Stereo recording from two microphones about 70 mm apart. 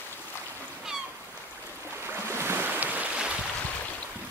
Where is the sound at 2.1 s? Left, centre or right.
Right; by 3.3 s centre.